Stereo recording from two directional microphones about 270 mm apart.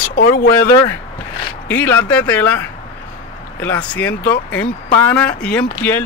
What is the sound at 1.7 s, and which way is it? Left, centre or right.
Speech, centre.